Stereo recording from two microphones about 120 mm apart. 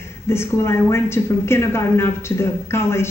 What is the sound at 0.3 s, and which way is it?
Speech, 20° left (ahead or behind).